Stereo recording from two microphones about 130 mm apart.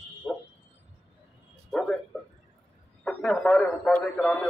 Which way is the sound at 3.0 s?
5° left (ahead or behind).